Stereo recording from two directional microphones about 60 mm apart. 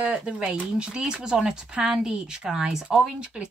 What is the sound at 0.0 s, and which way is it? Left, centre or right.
Speech, centre.